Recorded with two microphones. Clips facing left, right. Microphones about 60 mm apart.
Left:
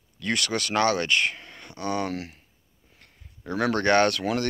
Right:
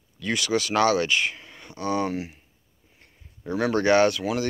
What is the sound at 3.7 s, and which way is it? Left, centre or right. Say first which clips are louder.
Speech: right 2 dB; left.